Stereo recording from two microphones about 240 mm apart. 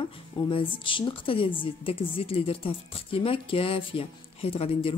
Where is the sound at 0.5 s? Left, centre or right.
Left.